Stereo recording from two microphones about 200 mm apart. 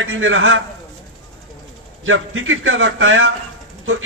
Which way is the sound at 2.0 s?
75° right (ahead or behind).